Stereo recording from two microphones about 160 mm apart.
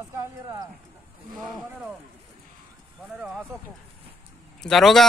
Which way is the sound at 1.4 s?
Centre (ahead or behind).